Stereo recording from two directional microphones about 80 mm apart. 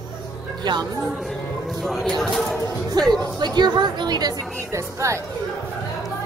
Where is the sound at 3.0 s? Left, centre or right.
Right.